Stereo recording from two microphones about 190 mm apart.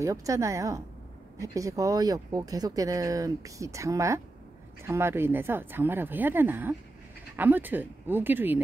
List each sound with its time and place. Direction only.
0.0 s speech: 15° right (ahead or behind)